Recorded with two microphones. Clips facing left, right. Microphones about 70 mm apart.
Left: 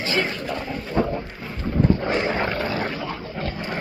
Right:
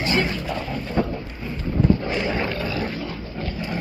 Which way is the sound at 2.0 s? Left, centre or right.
Left.